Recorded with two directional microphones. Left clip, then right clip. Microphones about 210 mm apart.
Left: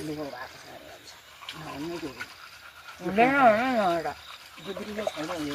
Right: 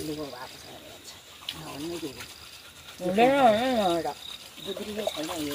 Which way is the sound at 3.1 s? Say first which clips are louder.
Even; 10° right (ahead or behind).